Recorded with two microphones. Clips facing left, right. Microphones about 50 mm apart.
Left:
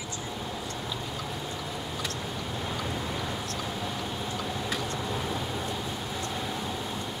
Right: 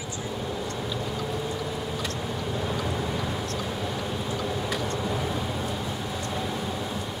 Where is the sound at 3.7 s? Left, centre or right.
Centre.